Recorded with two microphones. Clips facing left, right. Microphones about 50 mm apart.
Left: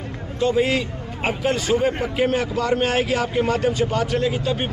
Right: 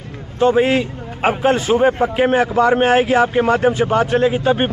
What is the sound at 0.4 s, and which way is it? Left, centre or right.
A man's voice, right.